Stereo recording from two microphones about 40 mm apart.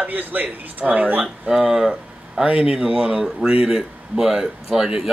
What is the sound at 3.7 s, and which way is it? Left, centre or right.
A man's voice, centre.